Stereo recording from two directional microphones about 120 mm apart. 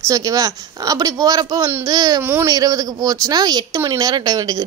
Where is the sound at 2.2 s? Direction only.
15° right (ahead or behind).